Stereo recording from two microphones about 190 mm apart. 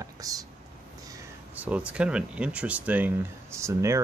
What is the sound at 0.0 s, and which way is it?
Speech, 20° right (ahead or behind).